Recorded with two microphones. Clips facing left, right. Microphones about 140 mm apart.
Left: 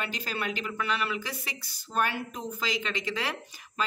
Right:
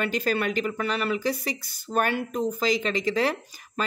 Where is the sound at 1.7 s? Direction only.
55° right (ahead or behind).